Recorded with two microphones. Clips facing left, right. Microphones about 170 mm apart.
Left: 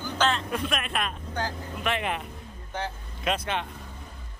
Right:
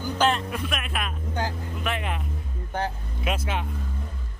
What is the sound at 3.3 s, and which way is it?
Speech, 5° right (ahead or behind).